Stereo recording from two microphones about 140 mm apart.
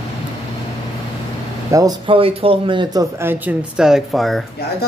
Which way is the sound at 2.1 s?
40° right (ahead or behind).